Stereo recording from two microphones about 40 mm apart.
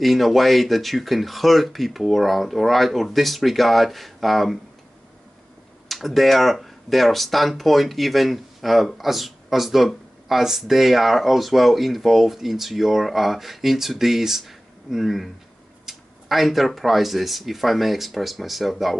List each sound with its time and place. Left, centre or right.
0.0 s speech: centre
5.9 s speech: centre